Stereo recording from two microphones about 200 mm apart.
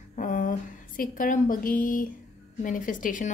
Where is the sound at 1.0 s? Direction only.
40° left (ahead or behind).